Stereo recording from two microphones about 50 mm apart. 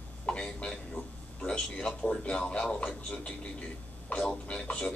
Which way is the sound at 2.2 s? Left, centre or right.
Left.